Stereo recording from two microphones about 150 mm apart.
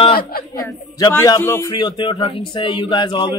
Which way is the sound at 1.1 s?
20° left (ahead or behind).